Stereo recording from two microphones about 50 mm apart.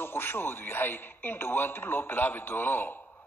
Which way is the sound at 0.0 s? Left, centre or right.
Left.